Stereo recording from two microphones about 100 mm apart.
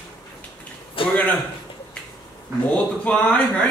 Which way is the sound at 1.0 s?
65° left (ahead or behind).